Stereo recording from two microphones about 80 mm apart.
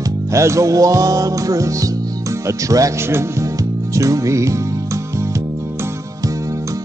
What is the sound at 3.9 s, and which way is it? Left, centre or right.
Music, right.